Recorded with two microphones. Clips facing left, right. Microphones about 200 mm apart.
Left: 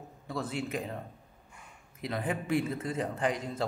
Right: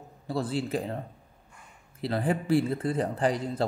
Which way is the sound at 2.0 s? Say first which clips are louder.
Right 5 dB; 30° right (ahead or behind).